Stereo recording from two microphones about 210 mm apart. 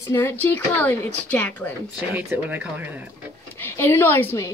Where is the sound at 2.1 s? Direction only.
10° right (ahead or behind).